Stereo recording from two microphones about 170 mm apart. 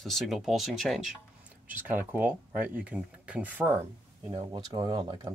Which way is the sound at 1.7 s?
10° right (ahead or behind).